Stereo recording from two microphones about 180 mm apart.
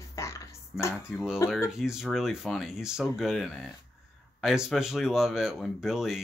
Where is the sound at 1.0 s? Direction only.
5° right (ahead or behind).